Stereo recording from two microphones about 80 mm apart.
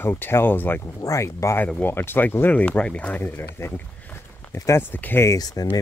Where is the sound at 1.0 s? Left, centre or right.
Left.